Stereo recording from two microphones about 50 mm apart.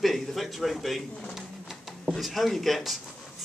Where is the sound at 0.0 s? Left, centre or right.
Centre.